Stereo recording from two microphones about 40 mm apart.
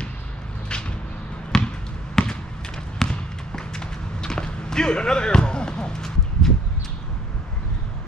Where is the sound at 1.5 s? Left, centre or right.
Centre.